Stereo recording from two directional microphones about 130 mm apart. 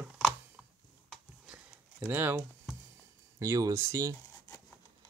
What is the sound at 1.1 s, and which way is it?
Typing, 10° right (ahead or behind).